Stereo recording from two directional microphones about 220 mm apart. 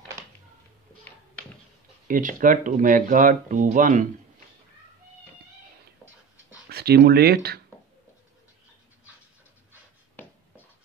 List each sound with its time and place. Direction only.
2.0 s speech: 35° right (ahead or behind)
6.7 s speech: 45° right (ahead or behind)